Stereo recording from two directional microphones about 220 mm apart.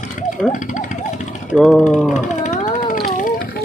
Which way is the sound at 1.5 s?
Centre (ahead or behind).